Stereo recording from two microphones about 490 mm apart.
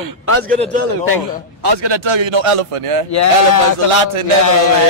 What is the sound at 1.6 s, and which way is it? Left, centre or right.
A man's voice, right.